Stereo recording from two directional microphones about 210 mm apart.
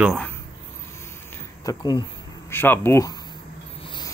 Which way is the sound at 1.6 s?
15° left (ahead or behind).